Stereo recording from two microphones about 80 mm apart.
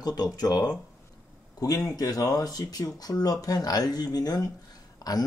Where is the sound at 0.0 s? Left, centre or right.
Left.